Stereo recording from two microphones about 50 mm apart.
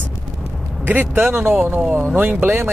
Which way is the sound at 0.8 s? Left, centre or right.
Right.